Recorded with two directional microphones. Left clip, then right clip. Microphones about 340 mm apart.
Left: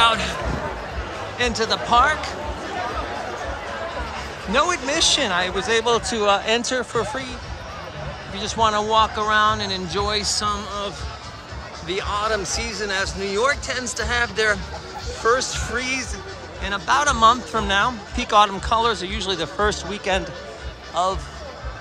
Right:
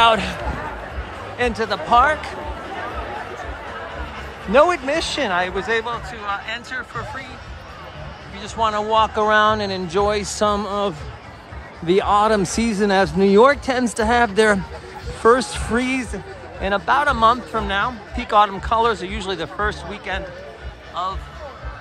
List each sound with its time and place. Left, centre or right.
0.0 s a man's voice: centre
1.4 s speech: centre
4.5 s speech: centre
8.4 s speech: centre